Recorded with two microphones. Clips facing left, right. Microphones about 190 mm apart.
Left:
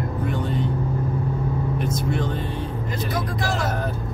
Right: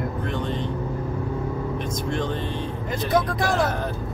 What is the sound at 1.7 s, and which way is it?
Vehicle, 5° left (ahead or behind).